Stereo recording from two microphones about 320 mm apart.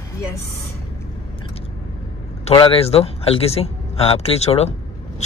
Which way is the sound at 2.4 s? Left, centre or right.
Centre.